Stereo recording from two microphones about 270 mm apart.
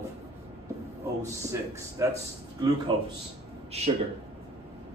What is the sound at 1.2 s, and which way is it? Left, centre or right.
Speech, centre.